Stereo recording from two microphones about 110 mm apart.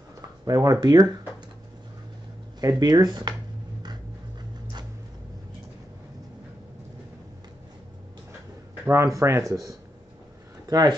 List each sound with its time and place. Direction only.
0.5 s speech: 35° right (ahead or behind)
2.6 s speech: 35° right (ahead or behind)
8.8 s speech: 30° right (ahead or behind)